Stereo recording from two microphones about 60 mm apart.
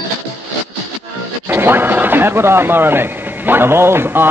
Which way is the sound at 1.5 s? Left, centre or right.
Right.